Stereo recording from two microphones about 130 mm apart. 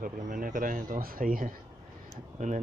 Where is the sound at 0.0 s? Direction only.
90° right.